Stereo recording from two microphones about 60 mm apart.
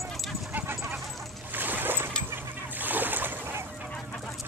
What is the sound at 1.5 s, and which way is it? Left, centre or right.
Boat, right.